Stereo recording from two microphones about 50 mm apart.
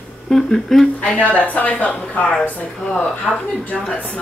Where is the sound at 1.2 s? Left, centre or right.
Left.